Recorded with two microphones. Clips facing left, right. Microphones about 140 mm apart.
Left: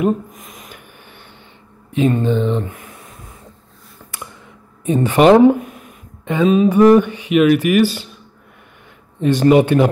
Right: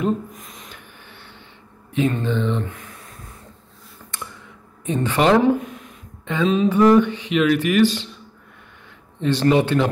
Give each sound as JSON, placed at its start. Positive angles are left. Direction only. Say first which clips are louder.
{"t": 0.0, "sound": "a sound", "louder": "left 4 dB", "side_deg": 0}
{"t": 0.7, "sound": "printer", "louder": "left 3 dB", "side_deg": 15}
{"t": 2.0, "sound": "speech", "louder": "left 5 dB", "side_deg": 15}
{"t": 4.8, "sound": "speech", "louder": "left 7 dB", "side_deg": 15}
{"t": 6.5, "sound": "speech", "louder": "left 4 dB", "side_deg": 10}
{"t": 9.2, "sound": "speech", "louder": "left 5 dB", "side_deg": 15}